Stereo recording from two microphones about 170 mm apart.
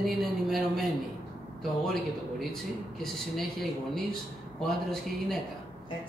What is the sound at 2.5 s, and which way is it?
A woman's voice, centre (ahead or behind).